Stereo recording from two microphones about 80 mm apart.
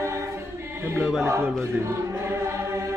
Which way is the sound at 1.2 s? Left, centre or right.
Right.